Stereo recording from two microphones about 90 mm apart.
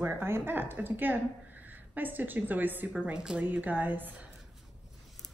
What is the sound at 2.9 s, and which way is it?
A woman's voice, 10° right (ahead or behind).